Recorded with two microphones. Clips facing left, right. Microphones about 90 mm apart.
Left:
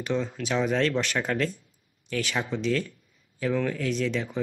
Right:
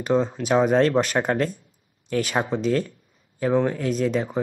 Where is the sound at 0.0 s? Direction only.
35° right (ahead or behind).